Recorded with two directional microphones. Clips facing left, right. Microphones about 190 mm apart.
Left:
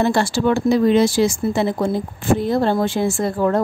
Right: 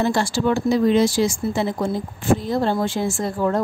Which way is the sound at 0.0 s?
65° left (ahead or behind).